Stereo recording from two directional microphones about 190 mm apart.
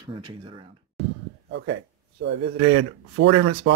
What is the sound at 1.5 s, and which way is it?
A man's voice, 65° right (ahead or behind).